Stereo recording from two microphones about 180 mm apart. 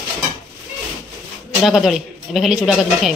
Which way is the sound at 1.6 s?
Centre (ahead or behind).